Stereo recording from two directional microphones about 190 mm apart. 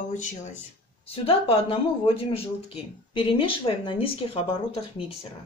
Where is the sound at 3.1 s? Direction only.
25° left (ahead or behind).